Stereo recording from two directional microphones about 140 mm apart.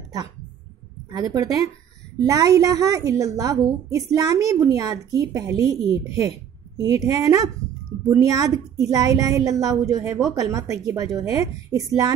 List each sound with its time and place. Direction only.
1.1 s a woman's voice: 25° right (ahead or behind)